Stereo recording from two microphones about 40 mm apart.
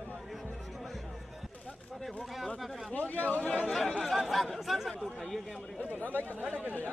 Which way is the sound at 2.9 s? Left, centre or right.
Left.